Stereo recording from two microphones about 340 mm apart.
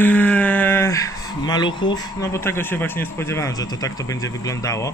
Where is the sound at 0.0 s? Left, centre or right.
Centre.